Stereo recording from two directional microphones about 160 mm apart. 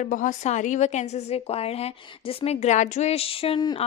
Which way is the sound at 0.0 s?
55° left (ahead or behind).